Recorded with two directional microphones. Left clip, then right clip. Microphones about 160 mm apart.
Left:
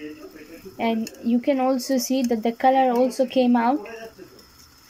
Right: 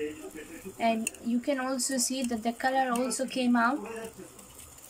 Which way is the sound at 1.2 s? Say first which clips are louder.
Left 10 dB; 35° left (ahead or behind).